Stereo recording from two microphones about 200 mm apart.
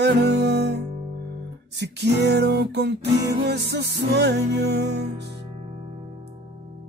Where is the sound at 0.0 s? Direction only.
55° right (ahead or behind).